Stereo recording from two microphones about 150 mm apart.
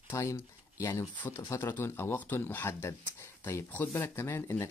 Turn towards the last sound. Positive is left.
turn(degrees=15)  # may be behind; listen again after turning